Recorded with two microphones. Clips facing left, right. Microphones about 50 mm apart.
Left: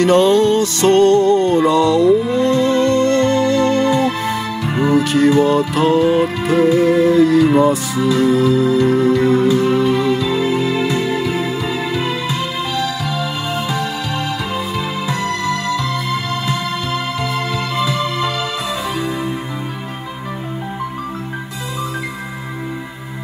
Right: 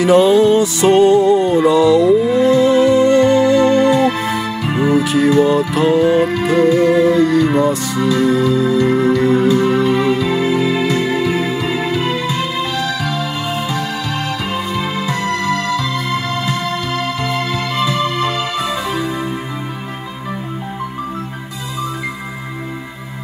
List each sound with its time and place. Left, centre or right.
0.0 s music: centre
4.7 s music: centre
5.4 s speech: centre
6.4 s music: centre
10.5 s music: centre
10.9 s music: right
11.1 s music: right
15.0 s music: right
18.0 s music: right